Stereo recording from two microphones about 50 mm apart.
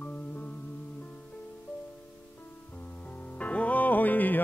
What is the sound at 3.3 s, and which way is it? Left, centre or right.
Music, left.